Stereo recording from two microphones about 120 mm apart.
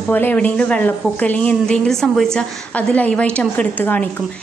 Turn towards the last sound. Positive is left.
turn(degrees=15)  # may be behind; listen again after turning